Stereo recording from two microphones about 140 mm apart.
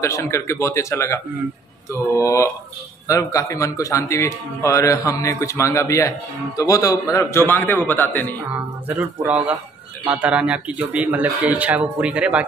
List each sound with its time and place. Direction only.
0.0 s a man's voice: 20° left (ahead or behind)
10.0 s speech: 10° right (ahead or behind)